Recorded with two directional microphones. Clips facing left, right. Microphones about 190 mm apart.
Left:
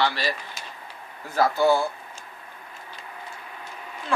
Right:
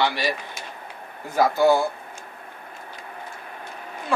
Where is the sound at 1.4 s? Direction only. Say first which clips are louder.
Right 2 dB; 15° right (ahead or behind).